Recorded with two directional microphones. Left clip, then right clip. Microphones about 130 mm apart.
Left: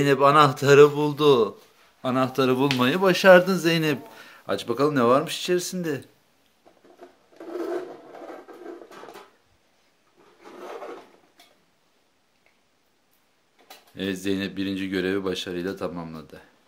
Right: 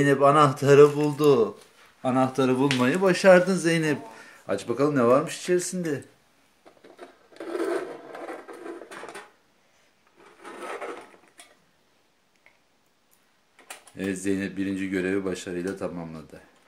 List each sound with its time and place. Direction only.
0.0 s a man's voice: centre (ahead or behind)
7.0 s a sound: 35° right (ahead or behind)
13.9 s speech: 10° left (ahead or behind)